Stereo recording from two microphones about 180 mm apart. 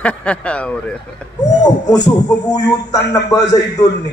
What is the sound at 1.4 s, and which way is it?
Speech, 40° left (ahead or behind).